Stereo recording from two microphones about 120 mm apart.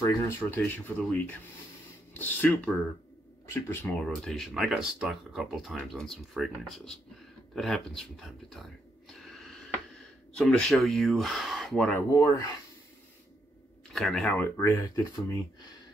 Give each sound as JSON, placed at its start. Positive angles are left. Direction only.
{"t": 0.0, "sound": "speech", "side_deg": 25}
{"t": 3.4, "sound": "rub", "side_deg": 20}
{"t": 3.8, "sound": "speech", "side_deg": 5}
{"t": 11.9, "sound": "rub", "side_deg": 25}
{"t": 13.9, "sound": "speech", "side_deg": 5}